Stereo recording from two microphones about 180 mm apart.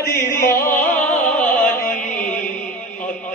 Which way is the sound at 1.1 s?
5° left (ahead or behind).